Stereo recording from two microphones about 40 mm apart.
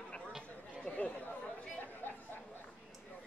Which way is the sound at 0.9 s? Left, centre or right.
Left.